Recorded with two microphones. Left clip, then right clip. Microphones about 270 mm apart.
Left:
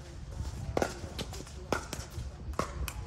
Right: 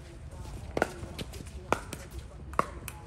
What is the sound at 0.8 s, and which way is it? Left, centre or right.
Run, centre.